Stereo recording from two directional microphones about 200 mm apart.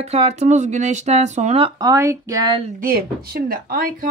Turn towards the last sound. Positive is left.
turn(degrees=-45)  # may be behind; listen again after turning